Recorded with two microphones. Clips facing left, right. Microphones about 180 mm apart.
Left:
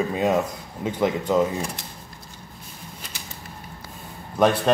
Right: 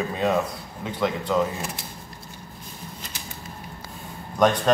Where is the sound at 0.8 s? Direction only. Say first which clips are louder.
Left 3 dB; 15° left (ahead or behind).